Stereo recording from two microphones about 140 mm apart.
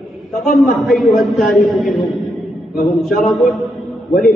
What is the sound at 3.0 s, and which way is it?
Speech, centre (ahead or behind).